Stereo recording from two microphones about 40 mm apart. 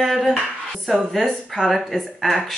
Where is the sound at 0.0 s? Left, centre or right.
Centre.